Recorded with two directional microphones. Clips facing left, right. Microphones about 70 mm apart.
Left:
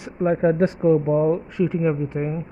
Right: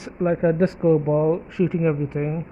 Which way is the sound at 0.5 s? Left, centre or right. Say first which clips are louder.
Even; left.